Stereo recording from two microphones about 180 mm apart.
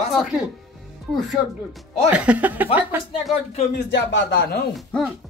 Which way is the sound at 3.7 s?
65° left (ahead or behind).